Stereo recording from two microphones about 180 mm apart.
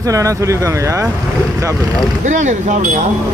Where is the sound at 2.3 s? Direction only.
45° right (ahead or behind).